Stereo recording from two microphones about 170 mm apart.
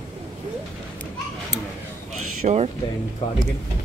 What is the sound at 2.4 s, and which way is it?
Speech, 45° right (ahead or behind).